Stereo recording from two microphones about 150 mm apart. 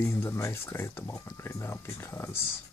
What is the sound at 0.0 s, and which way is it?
Speech, 15° left (ahead or behind).